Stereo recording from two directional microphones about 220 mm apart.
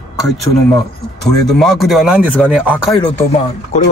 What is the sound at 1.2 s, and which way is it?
Speech, centre (ahead or behind).